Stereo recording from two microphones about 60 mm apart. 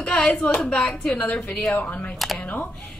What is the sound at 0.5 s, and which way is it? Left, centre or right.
Speech, centre.